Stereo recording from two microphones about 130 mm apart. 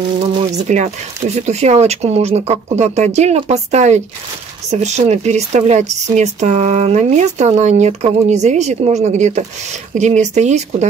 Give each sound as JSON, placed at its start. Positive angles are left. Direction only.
{"t": 0.6, "sound": "speech", "side_deg": -65}